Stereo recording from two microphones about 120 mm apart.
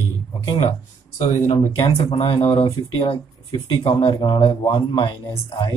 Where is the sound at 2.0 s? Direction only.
50° left (ahead or behind).